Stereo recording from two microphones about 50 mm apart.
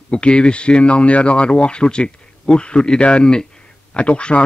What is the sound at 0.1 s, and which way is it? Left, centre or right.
Speech, centre.